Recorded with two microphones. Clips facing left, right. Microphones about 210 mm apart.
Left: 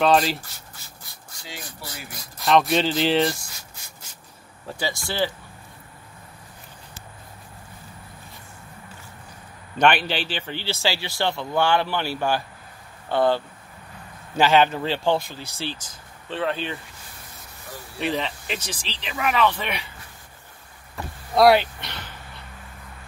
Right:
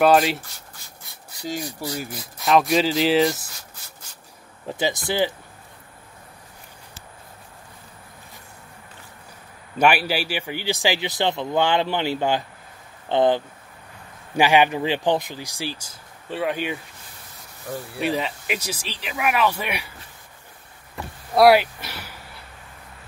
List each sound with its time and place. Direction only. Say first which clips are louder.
0.0 s speech: right 3 dB; 5° right (ahead or behind)
1.4 s speech: right 11 dB; 40° right (ahead or behind)
2.1 s speech: even; centre (ahead or behind)
4.6 s speech: right 5 dB; 20° right (ahead or behind)
9.8 s speech: right 1 dB; 5° right (ahead or behind)
17.9 s speech: right 1 dB; 5° right (ahead or behind)
21.4 s a sound: right 1 dB; 5° right (ahead or behind)